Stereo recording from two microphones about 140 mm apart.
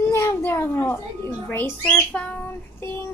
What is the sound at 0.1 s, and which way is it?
Cat, 20° left (ahead or behind).